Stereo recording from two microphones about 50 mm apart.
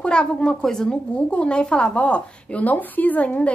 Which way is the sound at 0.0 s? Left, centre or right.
Centre.